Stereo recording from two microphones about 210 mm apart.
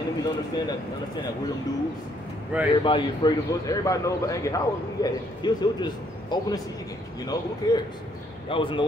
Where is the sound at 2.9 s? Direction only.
20° left (ahead or behind).